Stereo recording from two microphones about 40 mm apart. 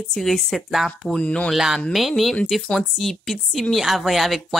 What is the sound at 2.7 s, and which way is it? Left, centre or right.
Speech, centre.